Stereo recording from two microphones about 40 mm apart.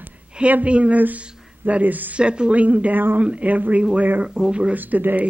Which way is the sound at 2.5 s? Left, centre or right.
Right.